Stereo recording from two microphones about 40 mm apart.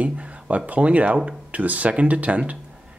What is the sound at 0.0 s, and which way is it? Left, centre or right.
Speech, right.